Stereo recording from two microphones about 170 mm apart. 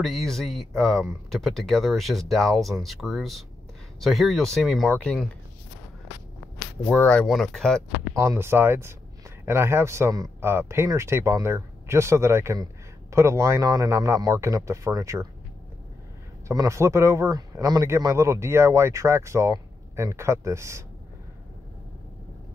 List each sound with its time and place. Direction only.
0.0 s speech: centre (ahead or behind)
6.9 s speech: 5° left (ahead or behind)
8.2 s speech: 15° right (ahead or behind)
16.4 s speech: 15° right (ahead or behind)